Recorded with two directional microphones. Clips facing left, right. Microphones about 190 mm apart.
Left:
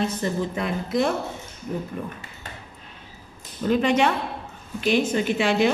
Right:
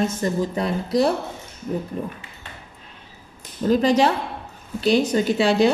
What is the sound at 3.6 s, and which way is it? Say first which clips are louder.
A woman's voice: right 3 dB; 35° right (ahead or behind).